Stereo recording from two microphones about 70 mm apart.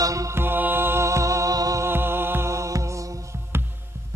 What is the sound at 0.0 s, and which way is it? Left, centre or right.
Mantra, right.